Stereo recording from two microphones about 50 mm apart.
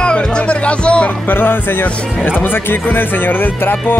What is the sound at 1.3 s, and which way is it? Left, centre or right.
Speech, left.